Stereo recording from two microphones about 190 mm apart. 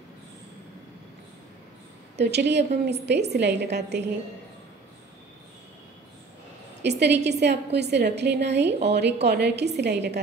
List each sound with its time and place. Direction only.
2.1 s a woman's voice: 65° right (ahead or behind)
6.8 s a woman's voice: 65° right (ahead or behind)